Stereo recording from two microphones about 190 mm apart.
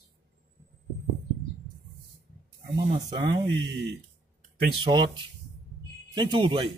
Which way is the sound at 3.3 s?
65° right (ahead or behind).